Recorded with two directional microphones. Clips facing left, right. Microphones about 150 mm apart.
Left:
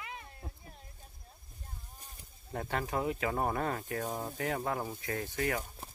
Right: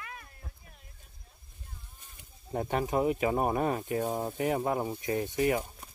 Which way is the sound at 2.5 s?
20° right (ahead or behind).